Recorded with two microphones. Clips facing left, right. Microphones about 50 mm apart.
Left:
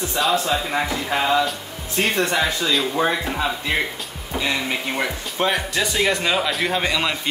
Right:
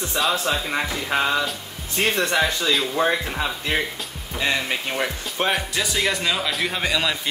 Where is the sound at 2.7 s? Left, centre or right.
Centre.